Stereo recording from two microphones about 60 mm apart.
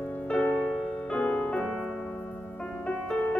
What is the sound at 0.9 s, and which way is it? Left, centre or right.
Music, centre.